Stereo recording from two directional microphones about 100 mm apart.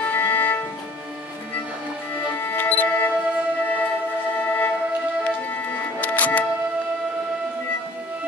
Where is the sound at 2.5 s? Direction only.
15° left (ahead or behind).